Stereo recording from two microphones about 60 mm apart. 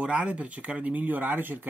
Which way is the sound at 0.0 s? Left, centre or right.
Right.